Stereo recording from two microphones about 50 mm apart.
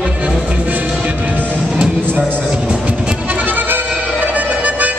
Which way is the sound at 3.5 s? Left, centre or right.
Right.